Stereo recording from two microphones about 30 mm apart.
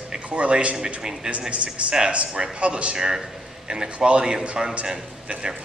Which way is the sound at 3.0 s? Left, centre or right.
Right.